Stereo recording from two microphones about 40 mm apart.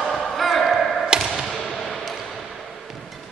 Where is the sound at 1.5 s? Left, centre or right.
Centre.